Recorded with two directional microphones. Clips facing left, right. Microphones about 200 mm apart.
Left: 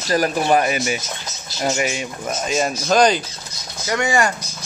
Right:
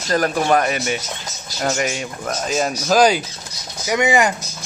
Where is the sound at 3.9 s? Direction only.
20° right (ahead or behind).